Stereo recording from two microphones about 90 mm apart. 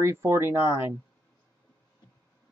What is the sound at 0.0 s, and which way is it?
Speech, 30° right (ahead or behind).